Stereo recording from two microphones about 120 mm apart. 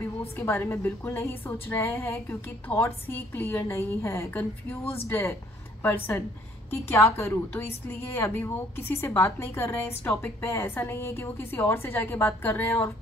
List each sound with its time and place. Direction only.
0.4 s a woman's voice: 20° left (ahead or behind)